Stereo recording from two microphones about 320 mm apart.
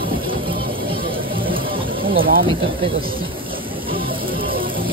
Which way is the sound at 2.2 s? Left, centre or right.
Right.